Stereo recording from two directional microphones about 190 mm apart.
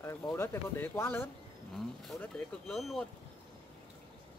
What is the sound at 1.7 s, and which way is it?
Speech, centre (ahead or behind).